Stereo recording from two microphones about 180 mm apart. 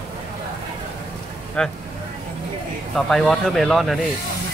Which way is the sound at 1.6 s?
5° left (ahead or behind).